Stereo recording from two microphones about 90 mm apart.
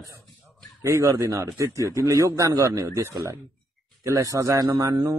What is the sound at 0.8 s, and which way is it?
Speech, 30° right (ahead or behind).